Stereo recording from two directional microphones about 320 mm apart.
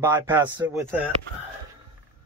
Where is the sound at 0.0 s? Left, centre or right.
Centre.